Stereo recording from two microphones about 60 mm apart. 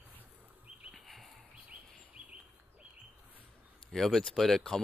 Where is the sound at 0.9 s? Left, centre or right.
Centre.